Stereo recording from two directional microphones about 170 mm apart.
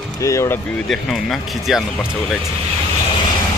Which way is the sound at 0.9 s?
Centre (ahead or behind).